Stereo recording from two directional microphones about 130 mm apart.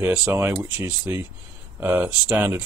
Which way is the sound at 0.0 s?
10° right (ahead or behind).